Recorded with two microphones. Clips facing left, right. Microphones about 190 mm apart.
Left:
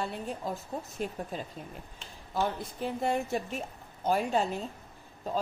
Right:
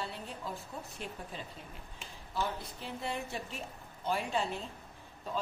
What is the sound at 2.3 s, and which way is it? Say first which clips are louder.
A woman's voice: left 5 dB; 45° left (ahead or behind).